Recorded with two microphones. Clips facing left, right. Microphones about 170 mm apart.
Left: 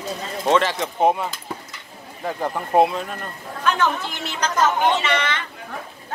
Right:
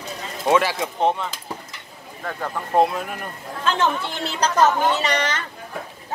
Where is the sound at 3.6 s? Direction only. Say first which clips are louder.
Even; 30° right (ahead or behind).